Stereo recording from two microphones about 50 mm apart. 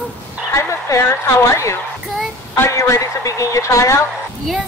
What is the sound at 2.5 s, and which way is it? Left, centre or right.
Speech, left.